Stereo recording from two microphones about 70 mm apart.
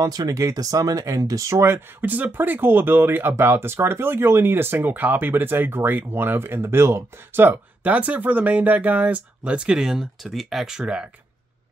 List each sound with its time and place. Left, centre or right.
0.0 s speech: right; by 11.1 s centre